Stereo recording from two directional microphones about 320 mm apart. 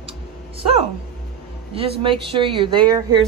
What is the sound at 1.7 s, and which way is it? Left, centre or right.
Speech, centre.